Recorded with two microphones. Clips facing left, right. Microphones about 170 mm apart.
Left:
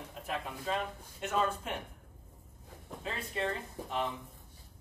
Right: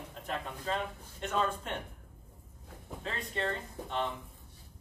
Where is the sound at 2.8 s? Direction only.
5° left (ahead or behind).